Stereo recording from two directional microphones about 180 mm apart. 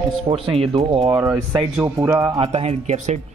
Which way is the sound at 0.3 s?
30° right (ahead or behind).